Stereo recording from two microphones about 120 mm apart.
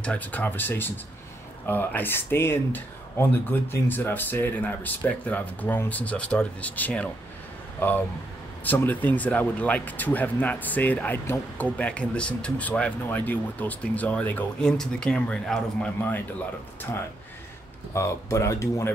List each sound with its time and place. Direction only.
0.0 s speech: 10° left (ahead or behind)
8.6 s speech: 15° left (ahead or behind)
17.9 s speech: 25° left (ahead or behind)